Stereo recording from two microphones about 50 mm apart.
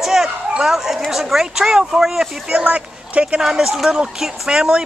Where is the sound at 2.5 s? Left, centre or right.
Right.